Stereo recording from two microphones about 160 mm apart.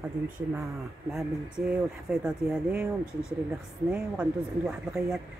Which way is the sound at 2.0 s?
5° right (ahead or behind).